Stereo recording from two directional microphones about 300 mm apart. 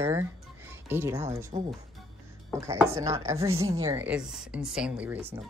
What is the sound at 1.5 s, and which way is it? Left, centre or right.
Speech, centre.